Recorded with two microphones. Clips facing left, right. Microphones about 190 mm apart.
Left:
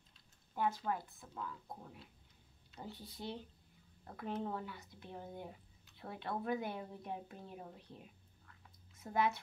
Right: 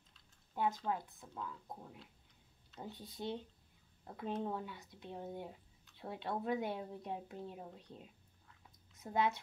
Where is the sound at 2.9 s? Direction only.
20° right (ahead or behind).